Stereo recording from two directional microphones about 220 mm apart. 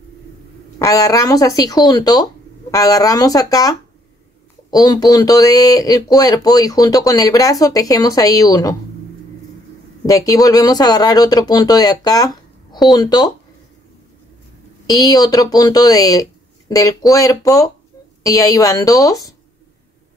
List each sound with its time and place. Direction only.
0.7 s speech: 15° left (ahead or behind)
10.0 s speech: 15° left (ahead or behind)
14.9 s speech: 15° left (ahead or behind)